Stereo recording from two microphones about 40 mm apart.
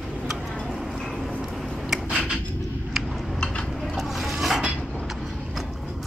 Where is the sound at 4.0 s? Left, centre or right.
Centre.